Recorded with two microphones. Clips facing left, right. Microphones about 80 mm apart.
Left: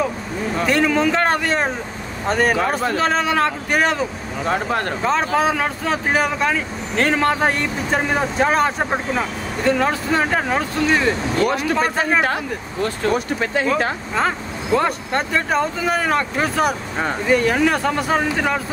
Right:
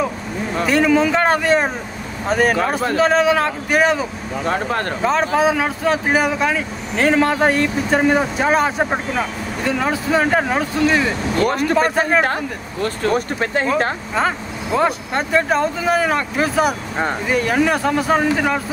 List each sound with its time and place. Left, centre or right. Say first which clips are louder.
0.7 s speech: right 3 dB; centre
11.4 s speech: right 3 dB; right
14.1 s speech: right 1 dB; centre